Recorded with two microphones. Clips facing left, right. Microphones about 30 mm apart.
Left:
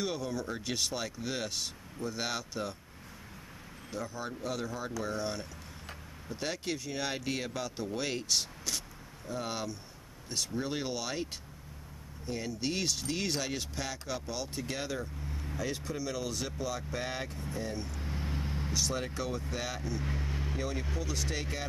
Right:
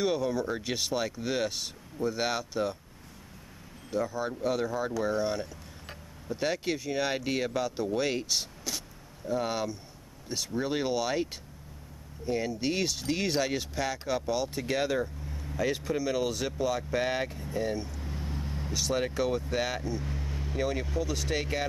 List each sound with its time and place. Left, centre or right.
0.0 s speech: centre
3.9 s speech: centre
12.3 s speech: centre
18.0 s vehicle: centre
18.7 s speech: centre
20.1 s vehicle: centre
20.5 s speech: centre